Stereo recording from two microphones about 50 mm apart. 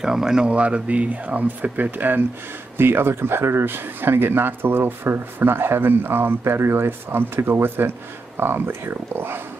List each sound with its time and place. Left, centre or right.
0.0 s speech: centre; by 2.2 s right
2.8 s speech: right